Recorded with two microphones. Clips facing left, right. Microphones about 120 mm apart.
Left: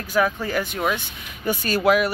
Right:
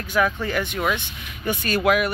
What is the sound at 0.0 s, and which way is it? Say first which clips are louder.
Speech: even; 35° left (ahead or behind).